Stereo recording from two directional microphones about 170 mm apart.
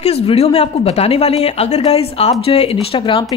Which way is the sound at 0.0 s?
40° left (ahead or behind).